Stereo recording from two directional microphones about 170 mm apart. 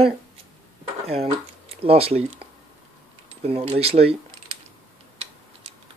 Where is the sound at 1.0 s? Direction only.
35° right (ahead or behind).